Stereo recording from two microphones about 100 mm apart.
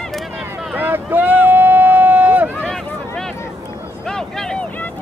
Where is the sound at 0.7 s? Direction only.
20° right (ahead or behind).